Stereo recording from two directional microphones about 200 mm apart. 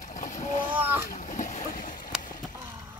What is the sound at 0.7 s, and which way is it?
Boat, 10° right (ahead or behind).